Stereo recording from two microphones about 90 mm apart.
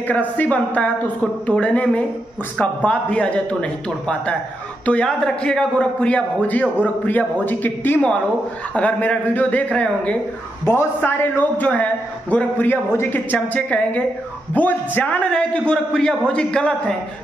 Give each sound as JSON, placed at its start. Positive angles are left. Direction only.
{"t": 0.1, "sound": "a man's voice", "side_deg": 15}
{"t": 10.6, "sound": "a man's voice", "side_deg": 25}